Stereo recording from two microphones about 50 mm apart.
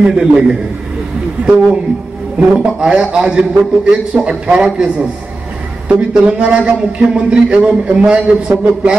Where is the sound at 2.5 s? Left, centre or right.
Centre.